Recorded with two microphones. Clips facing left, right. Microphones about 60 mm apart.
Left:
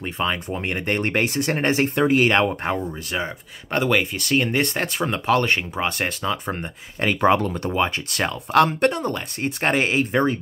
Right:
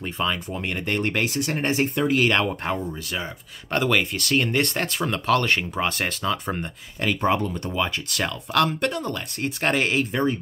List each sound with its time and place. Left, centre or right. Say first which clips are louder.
0.0 s speech: left 1 dB; left
2.0 s speech: left 3 dB; left
3.7 s speech: left 1 dB; centre
7.2 s speech: left 6 dB; left
7.7 s speech: left 3 dB; left